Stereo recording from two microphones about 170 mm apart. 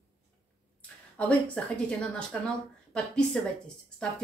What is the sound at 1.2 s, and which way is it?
Speech, 10° left (ahead or behind).